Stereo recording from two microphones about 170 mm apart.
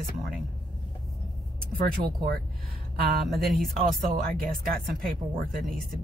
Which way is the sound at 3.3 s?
Centre (ahead or behind).